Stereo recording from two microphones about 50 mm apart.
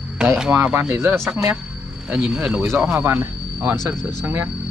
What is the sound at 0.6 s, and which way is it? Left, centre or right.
Speech, right.